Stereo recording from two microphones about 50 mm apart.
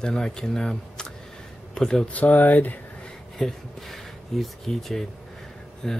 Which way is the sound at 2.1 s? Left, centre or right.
Left.